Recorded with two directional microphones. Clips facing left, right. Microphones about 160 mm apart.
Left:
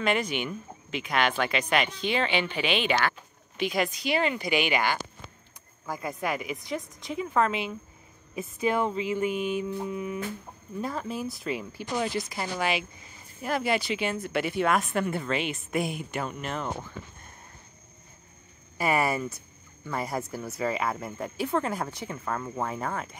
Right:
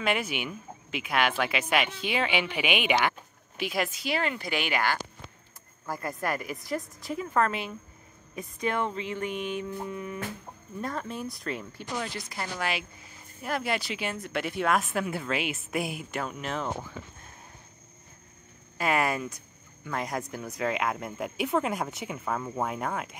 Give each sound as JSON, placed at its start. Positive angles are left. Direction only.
{"t": 0.0, "sound": "speech", "side_deg": -5}
{"t": 5.9, "sound": "speech", "side_deg": 0}
{"t": 8.4, "sound": "music", "side_deg": 5}
{"t": 10.8, "sound": "speech", "side_deg": 5}
{"t": 16.7, "sound": "a sound", "side_deg": -5}
{"t": 18.8, "sound": "music", "side_deg": 10}
{"t": 19.9, "sound": "speech", "side_deg": 5}